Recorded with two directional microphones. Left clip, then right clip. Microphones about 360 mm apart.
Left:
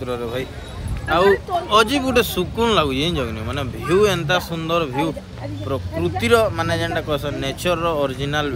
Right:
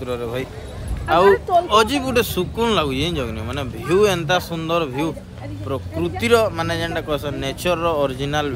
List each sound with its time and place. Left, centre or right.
0.0 s speech: centre